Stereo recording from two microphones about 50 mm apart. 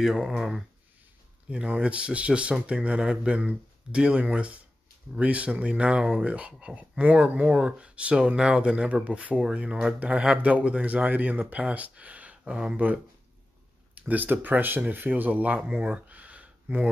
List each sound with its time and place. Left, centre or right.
0.0 s speech: centre
1.5 s speech: right